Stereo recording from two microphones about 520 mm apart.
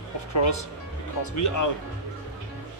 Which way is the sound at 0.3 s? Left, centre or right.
Left.